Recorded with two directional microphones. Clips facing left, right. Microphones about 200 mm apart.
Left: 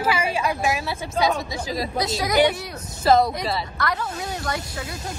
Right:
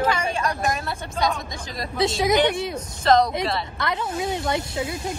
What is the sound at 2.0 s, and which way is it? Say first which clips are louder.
Speech: right 1 dB; 25° right (ahead or behind).